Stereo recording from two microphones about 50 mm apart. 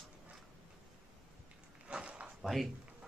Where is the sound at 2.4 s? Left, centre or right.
Centre.